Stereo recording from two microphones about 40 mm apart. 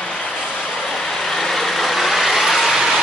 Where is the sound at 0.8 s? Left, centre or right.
Centre.